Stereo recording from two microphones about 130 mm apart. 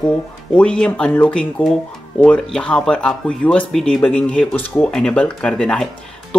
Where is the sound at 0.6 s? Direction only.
5° left (ahead or behind).